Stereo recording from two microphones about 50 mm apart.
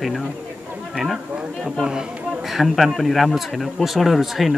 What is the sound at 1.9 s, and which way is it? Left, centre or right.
Speech, centre.